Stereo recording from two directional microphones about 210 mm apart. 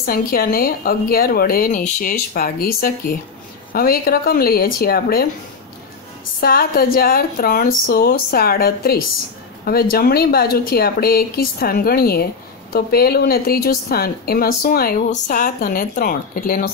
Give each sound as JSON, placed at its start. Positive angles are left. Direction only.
{"t": 0.0, "sound": "a woman's voice", "side_deg": 45}
{"t": 6.4, "sound": "a woman's voice", "side_deg": 45}